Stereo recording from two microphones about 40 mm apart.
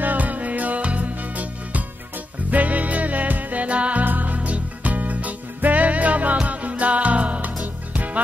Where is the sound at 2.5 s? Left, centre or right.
Right.